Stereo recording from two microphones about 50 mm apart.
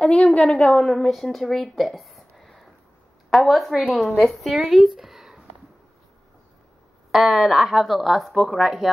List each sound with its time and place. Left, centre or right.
0.0 s a woman's voice: left; by 5.4 s centre
7.1 s speech: centre